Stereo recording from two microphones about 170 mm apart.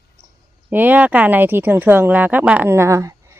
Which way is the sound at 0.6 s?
10° right (ahead or behind).